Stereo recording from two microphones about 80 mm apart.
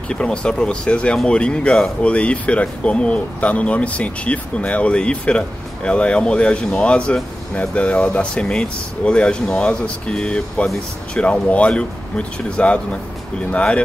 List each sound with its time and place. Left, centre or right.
0.1 s speech: centre